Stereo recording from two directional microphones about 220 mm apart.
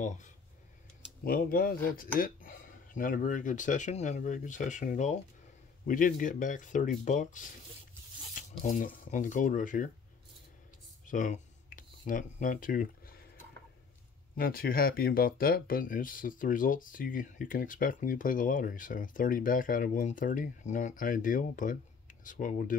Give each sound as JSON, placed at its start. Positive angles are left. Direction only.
{"t": 1.2, "sound": "speech", "side_deg": 40}
{"t": 11.1, "sound": "a sound", "side_deg": 35}
{"t": 14.3, "sound": "speech", "side_deg": 40}